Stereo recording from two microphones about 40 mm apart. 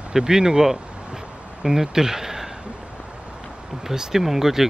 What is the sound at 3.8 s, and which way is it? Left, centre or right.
Speech, centre.